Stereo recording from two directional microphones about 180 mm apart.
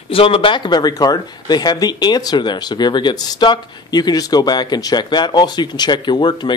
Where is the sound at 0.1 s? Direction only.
30° left (ahead or behind).